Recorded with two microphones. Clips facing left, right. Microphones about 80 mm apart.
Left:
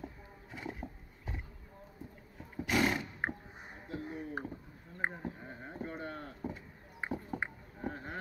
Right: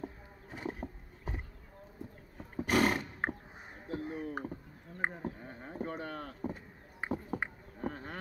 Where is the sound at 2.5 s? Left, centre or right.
Right.